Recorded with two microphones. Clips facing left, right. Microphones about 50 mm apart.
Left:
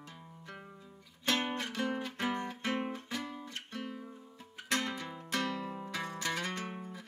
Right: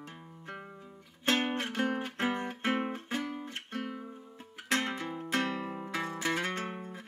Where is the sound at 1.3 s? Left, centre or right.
Right.